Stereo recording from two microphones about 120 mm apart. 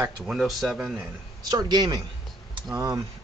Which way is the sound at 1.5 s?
35° right (ahead or behind).